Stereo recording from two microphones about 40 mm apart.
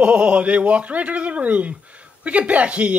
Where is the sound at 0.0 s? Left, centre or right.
Right.